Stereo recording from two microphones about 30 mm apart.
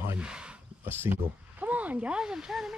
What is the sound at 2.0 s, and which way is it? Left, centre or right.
Speech, right.